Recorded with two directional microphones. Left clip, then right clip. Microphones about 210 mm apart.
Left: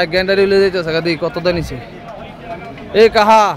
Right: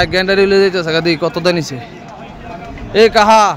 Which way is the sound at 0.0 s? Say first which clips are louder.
Right 1 dB; 10° right (ahead or behind).